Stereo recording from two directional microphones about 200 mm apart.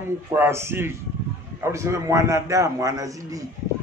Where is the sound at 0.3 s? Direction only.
10° right (ahead or behind).